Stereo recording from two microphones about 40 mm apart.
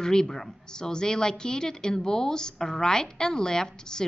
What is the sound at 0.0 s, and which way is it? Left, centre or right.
A woman's voice, centre.